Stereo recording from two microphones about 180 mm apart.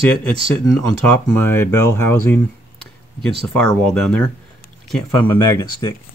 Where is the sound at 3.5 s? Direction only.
5° left (ahead or behind).